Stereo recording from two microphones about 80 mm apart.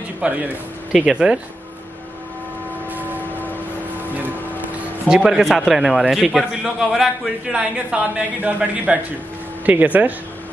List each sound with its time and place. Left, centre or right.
0.2 s speech: centre
4.1 s a sound: right
5.0 s a man's voice: centre